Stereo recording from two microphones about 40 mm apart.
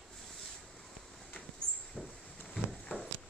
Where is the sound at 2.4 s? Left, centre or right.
Centre.